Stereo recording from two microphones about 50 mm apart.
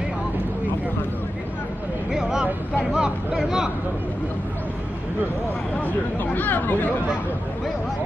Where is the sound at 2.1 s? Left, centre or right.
Centre.